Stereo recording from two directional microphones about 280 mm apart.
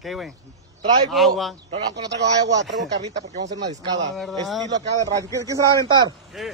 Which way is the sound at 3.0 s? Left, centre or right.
Right.